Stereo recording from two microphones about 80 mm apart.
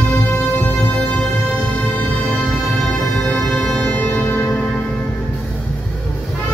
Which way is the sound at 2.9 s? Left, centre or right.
Centre.